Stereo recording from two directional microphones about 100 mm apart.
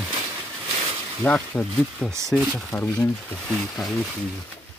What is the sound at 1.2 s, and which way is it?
Speech, 15° left (ahead or behind).